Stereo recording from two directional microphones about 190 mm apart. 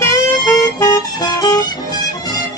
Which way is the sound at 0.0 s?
15° left (ahead or behind).